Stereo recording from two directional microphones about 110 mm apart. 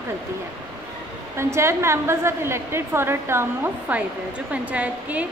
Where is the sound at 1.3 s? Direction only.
25° right (ahead or behind).